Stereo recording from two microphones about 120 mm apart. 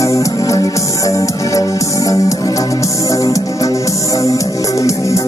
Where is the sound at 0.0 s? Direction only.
25° left (ahead or behind).